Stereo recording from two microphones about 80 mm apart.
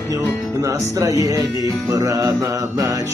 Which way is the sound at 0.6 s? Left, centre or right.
Right.